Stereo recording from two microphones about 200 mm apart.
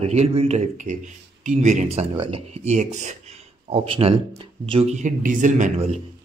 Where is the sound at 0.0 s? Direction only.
30° right (ahead or behind).